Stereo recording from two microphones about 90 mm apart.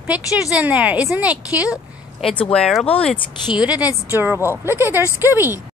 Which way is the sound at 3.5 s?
15° right (ahead or behind).